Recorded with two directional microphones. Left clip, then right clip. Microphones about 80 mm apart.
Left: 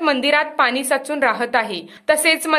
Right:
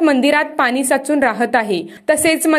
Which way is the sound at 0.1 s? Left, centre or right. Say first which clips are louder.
Right 3 dB; right.